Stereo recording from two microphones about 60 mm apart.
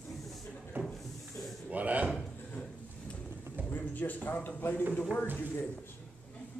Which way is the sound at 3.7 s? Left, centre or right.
Left.